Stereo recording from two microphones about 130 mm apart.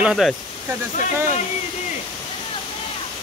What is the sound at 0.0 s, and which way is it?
Speech, centre (ahead or behind).